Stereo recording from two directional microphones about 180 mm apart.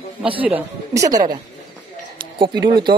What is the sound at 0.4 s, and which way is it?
A woman's voice, 10° right (ahead or behind).